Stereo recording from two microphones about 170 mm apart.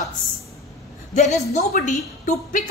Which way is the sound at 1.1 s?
45° left (ahead or behind).